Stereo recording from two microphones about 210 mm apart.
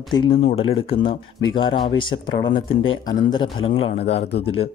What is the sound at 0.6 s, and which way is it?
Speech, 25° left (ahead or behind).